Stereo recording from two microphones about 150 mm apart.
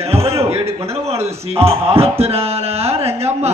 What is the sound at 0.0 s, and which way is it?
Music, 40° right (ahead or behind).